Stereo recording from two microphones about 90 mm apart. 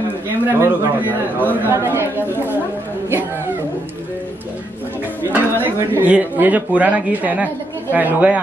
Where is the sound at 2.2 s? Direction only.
25° left (ahead or behind).